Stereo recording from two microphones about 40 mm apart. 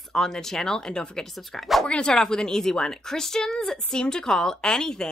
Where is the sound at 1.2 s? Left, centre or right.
Centre.